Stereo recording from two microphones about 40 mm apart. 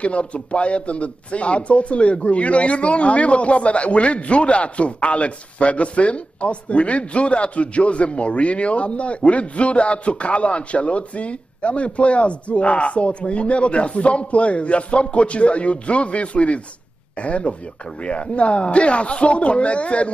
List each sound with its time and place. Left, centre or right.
0.0 s a man's voice: left